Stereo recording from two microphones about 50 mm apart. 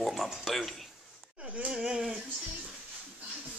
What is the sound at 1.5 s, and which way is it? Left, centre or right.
Speech, centre.